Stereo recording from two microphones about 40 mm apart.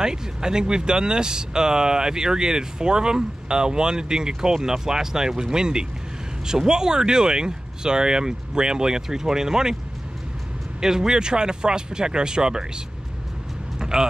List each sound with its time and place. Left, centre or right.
0.0 s speech: centre
10.8 s speech: centre
13.7 s vehicle: centre